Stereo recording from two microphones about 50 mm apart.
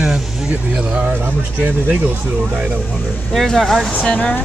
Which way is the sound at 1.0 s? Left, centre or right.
Right.